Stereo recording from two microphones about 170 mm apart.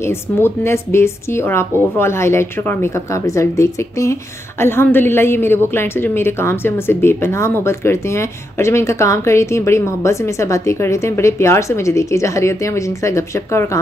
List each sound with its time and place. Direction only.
0.0 s a woman's voice: 15° left (ahead or behind)